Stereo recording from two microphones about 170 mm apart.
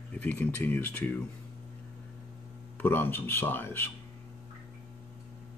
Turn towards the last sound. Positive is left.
turn(degrees=15)  # may be behind; listen again after turning